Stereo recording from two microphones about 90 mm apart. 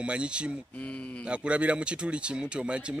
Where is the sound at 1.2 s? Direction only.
10° right (ahead or behind).